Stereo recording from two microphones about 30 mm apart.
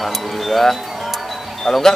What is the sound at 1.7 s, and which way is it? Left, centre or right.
Speech, centre.